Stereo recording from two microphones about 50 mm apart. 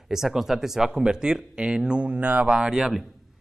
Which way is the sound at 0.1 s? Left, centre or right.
Centre.